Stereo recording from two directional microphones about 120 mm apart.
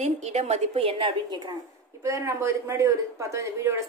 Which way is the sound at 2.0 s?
25° right (ahead or behind).